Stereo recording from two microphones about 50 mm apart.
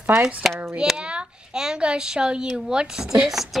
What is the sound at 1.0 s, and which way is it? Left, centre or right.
A woman's voice, centre.